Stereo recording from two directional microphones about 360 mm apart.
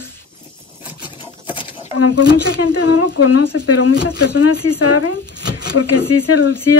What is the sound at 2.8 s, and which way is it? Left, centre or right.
Speech, left.